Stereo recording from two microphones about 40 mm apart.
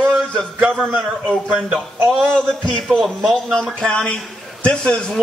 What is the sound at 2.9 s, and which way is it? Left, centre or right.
Speech, centre.